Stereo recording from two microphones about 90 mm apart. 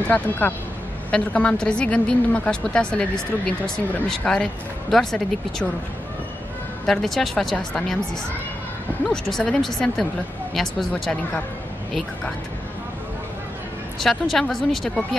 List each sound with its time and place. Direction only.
0.1 s a woman's voice: 20° left (ahead or behind)
6.9 s speech: 5° left (ahead or behind)
9.0 s speech: 5° left (ahead or behind)
13.9 s speech: centre (ahead or behind)